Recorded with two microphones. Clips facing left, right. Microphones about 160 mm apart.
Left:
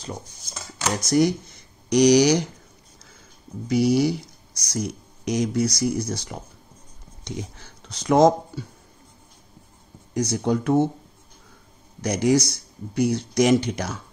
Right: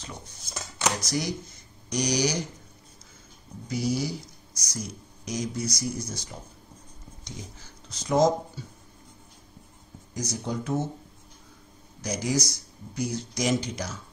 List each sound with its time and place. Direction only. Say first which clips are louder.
1.0 s speech: left 11 dB; 55° left (ahead or behind)
1.9 s speech: left 11 dB; 75° left (ahead or behind)
3.6 s speech: left 9 dB; 70° left (ahead or behind)
10.1 s speech: left 9 dB; 60° left (ahead or behind)
12.0 s speech: left 8 dB; 60° left (ahead or behind)